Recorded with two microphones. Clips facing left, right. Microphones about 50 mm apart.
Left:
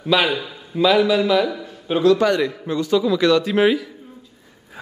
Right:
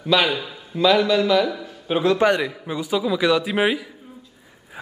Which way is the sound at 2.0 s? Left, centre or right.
Right.